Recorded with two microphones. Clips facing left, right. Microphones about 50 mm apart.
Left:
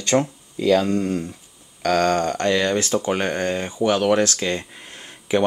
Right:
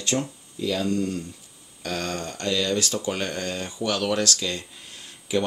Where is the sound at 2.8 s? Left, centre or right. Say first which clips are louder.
Left 5 dB; left.